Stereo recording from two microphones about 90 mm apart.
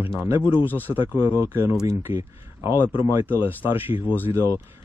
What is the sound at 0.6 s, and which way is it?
Speech, 20° left (ahead or behind).